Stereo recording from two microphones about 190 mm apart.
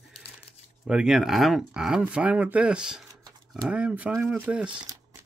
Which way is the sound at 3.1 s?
20° right (ahead or behind).